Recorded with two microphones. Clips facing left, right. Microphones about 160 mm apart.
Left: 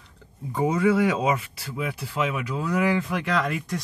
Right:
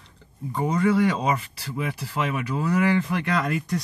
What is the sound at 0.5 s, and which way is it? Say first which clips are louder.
Speech: left 1 dB; 5° left (ahead or behind).